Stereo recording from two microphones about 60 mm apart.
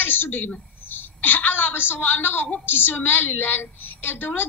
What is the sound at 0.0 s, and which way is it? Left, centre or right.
A woman's voice, left.